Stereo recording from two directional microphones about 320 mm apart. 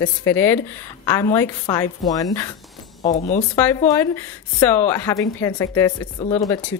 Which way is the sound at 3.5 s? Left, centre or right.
Centre.